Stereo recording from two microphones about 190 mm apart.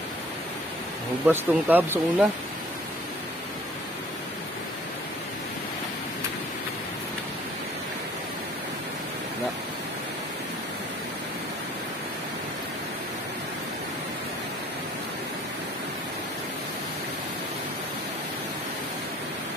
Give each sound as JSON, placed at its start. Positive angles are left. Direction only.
{"t": 1.2, "sound": "speech", "side_deg": -10}